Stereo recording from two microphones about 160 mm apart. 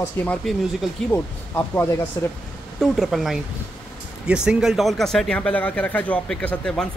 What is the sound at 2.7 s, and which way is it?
Speech, centre (ahead or behind).